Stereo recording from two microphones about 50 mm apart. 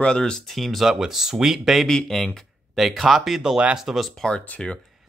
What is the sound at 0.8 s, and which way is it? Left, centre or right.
Speech, centre.